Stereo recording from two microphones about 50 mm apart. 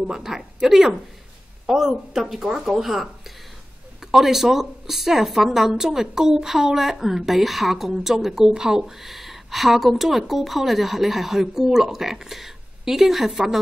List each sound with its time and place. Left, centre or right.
0.0 s a woman's voice: centre